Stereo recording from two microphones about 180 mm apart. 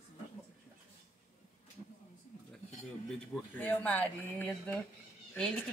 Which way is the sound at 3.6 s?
10° left (ahead or behind).